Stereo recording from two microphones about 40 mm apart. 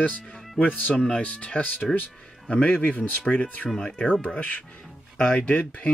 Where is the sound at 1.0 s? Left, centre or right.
Left.